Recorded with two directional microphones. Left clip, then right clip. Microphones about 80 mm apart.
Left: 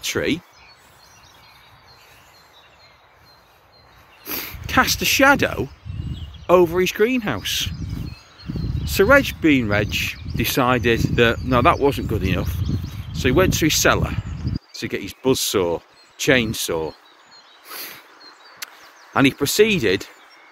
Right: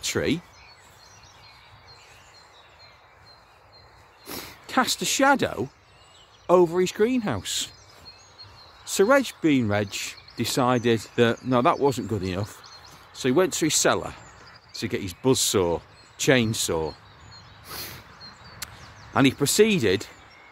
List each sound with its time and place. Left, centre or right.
0.0 s speech: centre
4.2 s speech: centre
8.8 s speech: centre
10.4 s speech: centre
11.8 s speech: centre
14.7 s speech: right
17.6 s a sound: right
19.1 s speech: centre